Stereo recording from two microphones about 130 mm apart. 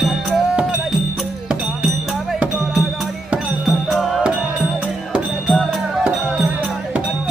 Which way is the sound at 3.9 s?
Centre (ahead or behind).